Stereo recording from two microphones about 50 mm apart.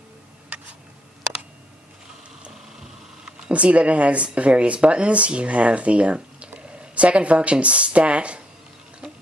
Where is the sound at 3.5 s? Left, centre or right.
Right.